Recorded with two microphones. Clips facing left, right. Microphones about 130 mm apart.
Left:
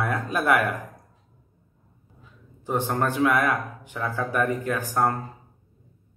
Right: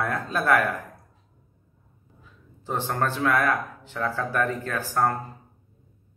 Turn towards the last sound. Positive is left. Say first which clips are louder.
# left 1 dB
turn(degrees=15)  # may be behind; listen again after turning